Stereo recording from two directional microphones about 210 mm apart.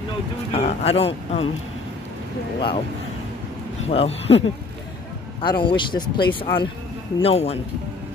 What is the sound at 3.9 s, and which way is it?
Speech, 30° left (ahead or behind).